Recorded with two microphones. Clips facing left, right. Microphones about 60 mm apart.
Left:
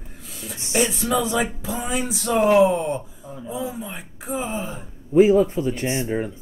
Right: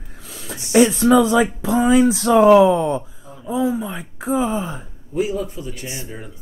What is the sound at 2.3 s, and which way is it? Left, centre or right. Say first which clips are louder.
Speech: right 4 dB; right.